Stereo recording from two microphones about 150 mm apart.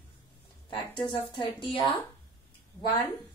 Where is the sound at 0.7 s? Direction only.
30° left (ahead or behind).